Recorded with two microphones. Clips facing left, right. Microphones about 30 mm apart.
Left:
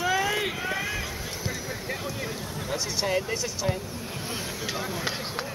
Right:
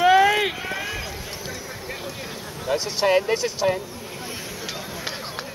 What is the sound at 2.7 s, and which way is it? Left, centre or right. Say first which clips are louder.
Speech: right 8 dB; right.